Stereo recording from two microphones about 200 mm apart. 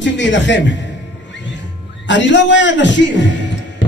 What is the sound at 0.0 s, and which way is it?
Speech, 65° left (ahead or behind).